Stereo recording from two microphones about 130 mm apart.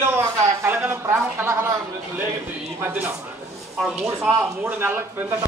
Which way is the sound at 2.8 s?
15° right (ahead or behind).